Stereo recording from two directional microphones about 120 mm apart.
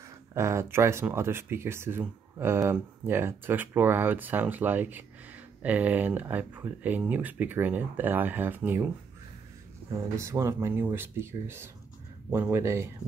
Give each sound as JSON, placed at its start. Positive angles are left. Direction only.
{"t": 0.3, "sound": "speech", "side_deg": -25}
{"t": 9.9, "sound": "speech", "side_deg": -25}